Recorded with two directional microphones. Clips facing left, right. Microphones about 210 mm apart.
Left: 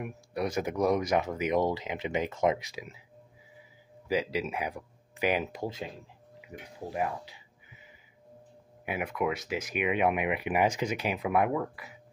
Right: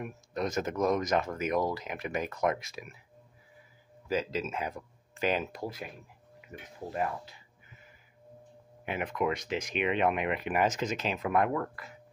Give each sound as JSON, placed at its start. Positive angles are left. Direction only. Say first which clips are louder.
{"t": 0.0, "sound": "speech", "louder": "left 1 dB", "side_deg": 10}
{"t": 4.1, "sound": "speech", "louder": "left 2 dB", "side_deg": 15}
{"t": 6.4, "sound": "music", "louder": "left 1 dB", "side_deg": 15}
{"t": 8.8, "sound": "speech", "louder": "even", "side_deg": 10}